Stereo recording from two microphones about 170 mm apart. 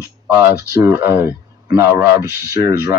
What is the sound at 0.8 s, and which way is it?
Speech, 10° right (ahead or behind).